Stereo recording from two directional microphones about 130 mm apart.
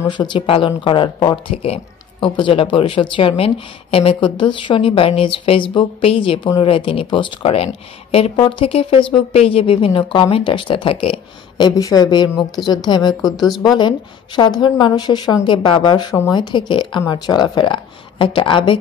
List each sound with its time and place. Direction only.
0.1 s speech: 35° left (ahead or behind)